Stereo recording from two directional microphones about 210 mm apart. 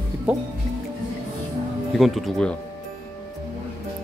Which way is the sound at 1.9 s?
Centre (ahead or behind).